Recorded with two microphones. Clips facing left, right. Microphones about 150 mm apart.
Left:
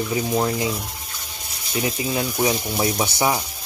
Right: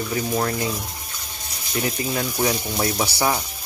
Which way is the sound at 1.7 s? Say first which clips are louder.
Left 1 dB; 15° left (ahead or behind).